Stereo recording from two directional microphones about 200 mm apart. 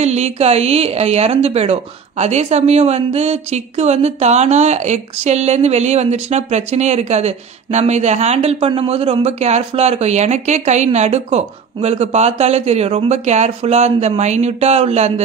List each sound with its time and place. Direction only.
0.0 s a woman's voice: 35° right (ahead or behind)